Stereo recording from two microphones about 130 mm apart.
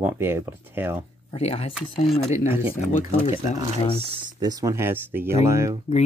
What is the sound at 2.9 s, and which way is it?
Speech, 85° left.